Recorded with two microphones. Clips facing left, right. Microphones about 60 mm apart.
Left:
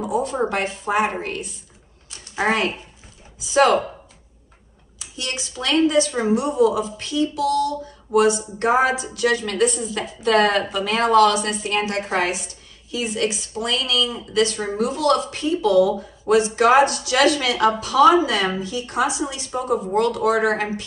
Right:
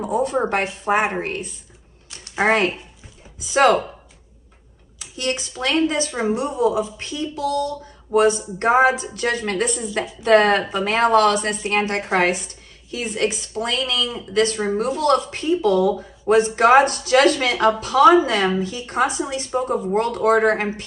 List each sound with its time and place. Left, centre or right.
0.1 s speech: right
2.0 s a sound: right
3.3 s speech: right
4.9 s speech: right